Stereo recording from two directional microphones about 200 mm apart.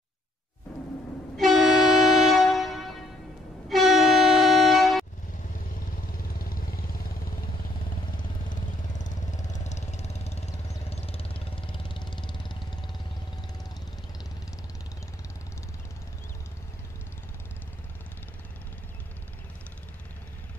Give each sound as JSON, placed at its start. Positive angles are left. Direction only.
{"t": 1.3, "sound": "a sound", "side_deg": 0}
{"t": 3.6, "sound": "train", "side_deg": 0}
{"t": 6.1, "sound": "vehicle", "side_deg": 45}
{"t": 8.1, "sound": "vehicle", "side_deg": 40}